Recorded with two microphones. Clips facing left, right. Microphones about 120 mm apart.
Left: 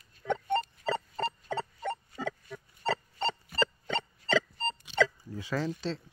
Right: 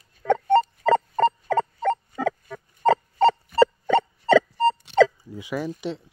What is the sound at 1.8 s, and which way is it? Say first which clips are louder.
Owl: right 11 dB; 70° right (ahead or behind).